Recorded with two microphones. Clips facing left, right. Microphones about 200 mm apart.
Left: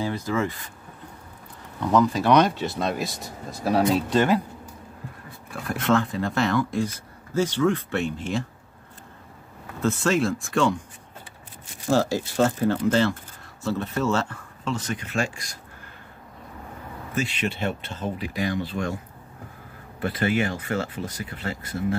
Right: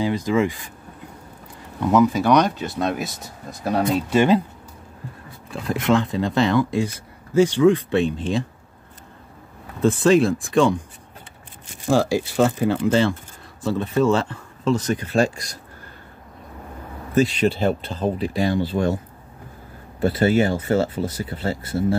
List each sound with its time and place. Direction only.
0.0 s speech: 15° right (ahead or behind)
1.8 s speech: 10° right (ahead or behind)
4.1 s speech: 15° right (ahead or behind)
5.6 s speech: 15° right (ahead or behind)
9.8 s speech: 15° right (ahead or behind)
11.9 s speech: 10° right (ahead or behind)
14.6 s speech: 40° right (ahead or behind)
17.1 s speech: 35° right (ahead or behind)
20.0 s speech: 30° right (ahead or behind)